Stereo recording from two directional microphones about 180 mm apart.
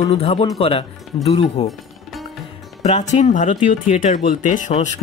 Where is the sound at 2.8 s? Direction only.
40° left (ahead or behind).